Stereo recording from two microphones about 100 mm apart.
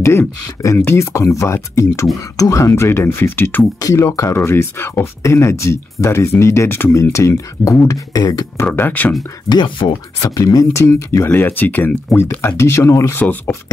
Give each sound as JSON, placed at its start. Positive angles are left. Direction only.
{"t": 0.7, "sound": "speech", "side_deg": 25}
{"t": 8.6, "sound": "speech", "side_deg": 15}
{"t": 9.5, "sound": "speech", "side_deg": 55}
{"t": 10.3, "sound": "speech", "side_deg": 35}
{"t": 11.2, "sound": "speech", "side_deg": 20}